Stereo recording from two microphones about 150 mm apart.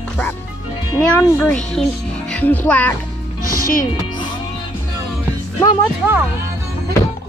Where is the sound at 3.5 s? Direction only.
75° left (ahead or behind).